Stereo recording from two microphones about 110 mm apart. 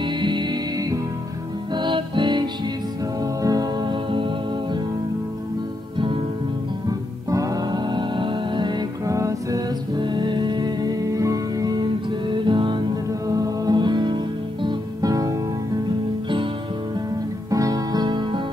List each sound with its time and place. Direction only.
0.0 s music: 45° right (ahead or behind)
3.9 s music: 50° right (ahead or behind)
5.9 s music: 50° right (ahead or behind)
6.9 s music: 30° right (ahead or behind)
9.0 s music: 30° right (ahead or behind)
9.9 s music: 45° right (ahead or behind)
13.3 s music: 35° right (ahead or behind)
17.5 s music: 30° right (ahead or behind)